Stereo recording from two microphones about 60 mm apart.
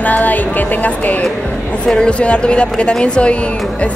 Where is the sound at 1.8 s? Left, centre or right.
Centre.